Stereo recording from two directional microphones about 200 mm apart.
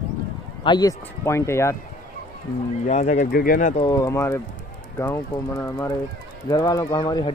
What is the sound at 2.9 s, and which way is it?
Speech, 35° left (ahead or behind).